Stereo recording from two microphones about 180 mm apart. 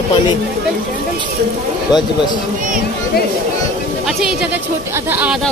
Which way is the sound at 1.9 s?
25° left (ahead or behind).